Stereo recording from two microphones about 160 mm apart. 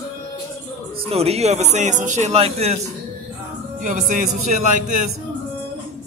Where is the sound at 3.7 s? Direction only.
55° right (ahead or behind).